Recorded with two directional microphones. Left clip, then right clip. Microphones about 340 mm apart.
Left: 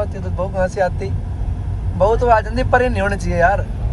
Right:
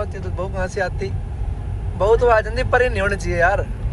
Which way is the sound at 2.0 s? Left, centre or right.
Centre.